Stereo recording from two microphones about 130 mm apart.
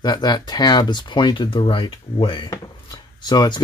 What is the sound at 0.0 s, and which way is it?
Speech, 35° left (ahead or behind).